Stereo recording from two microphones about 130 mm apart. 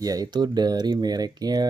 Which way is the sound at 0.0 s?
30° right (ahead or behind).